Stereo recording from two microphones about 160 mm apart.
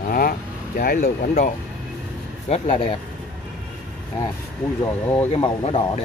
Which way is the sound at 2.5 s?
45° left (ahead or behind).